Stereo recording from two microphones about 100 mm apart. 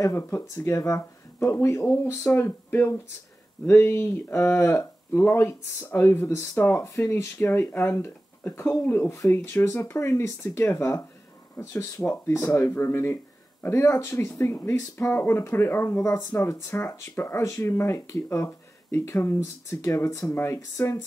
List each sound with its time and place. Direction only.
0.0 s speech: 25° left (ahead or behind)